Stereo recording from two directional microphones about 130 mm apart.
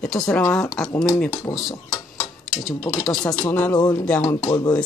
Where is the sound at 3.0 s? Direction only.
5° left (ahead or behind).